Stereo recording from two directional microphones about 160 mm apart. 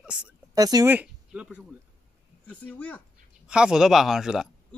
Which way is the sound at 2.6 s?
10° left (ahead or behind).